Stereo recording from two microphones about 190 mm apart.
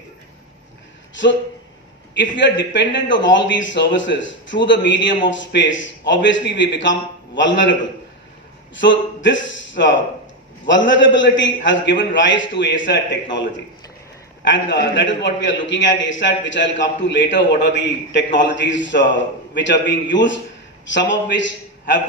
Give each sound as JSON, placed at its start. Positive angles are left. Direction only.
{"t": 2.1, "sound": "a man's voice", "side_deg": 70}
{"t": 8.7, "sound": "a man's voice", "side_deg": 75}